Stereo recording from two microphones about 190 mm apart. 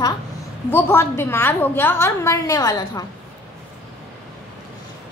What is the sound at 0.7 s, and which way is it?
A woman's voice, 10° left (ahead or behind).